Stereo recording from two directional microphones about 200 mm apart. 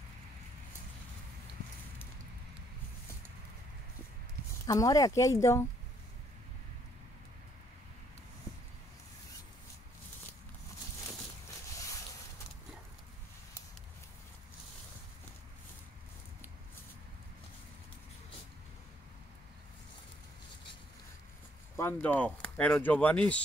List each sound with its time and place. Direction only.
4.6 s speech: 15° left (ahead or behind)
11.4 s boat: 15° left (ahead or behind)
21.7 s speech: 10° left (ahead or behind)